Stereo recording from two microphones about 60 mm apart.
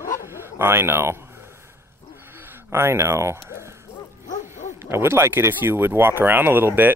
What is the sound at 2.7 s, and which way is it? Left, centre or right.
Speech, right.